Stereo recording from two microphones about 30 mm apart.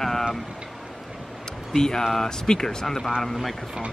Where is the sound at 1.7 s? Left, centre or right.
Left.